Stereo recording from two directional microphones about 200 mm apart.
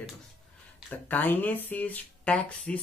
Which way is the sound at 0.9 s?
10° left (ahead or behind).